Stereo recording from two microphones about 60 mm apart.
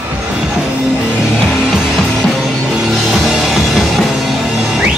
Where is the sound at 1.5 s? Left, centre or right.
Centre.